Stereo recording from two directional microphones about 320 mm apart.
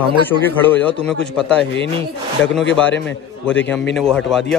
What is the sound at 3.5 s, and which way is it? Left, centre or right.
A man's voice, centre.